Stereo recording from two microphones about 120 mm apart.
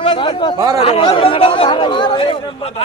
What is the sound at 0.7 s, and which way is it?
Speech, 50° left (ahead or behind).